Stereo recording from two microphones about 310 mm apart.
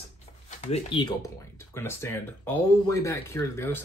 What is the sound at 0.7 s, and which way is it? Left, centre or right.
Speech, centre.